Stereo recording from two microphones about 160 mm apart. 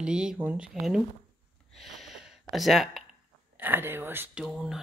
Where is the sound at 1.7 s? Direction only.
Centre (ahead or behind).